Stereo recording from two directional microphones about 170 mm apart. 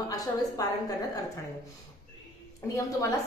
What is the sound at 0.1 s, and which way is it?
A woman's voice, 20° left (ahead or behind).